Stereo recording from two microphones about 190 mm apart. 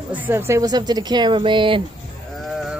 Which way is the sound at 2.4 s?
Centre (ahead or behind).